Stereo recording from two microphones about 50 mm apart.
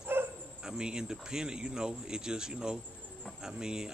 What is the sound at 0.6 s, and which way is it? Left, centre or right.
Speech, centre.